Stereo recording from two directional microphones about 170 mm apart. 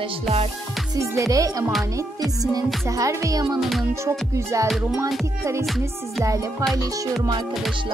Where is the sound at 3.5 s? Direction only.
Centre (ahead or behind).